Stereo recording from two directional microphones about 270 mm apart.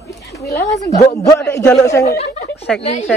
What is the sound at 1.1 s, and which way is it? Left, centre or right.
A man's voice, centre.